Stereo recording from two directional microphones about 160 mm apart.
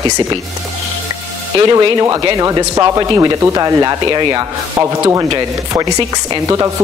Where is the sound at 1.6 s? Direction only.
25° right (ahead or behind).